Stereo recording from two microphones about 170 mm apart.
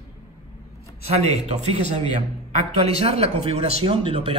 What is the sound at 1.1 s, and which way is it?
Speech, 40° right (ahead or behind).